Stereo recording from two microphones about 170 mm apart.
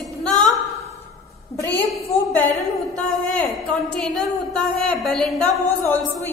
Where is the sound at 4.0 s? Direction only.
5° left (ahead or behind).